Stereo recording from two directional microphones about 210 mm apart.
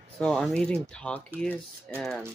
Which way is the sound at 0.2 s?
5° left (ahead or behind).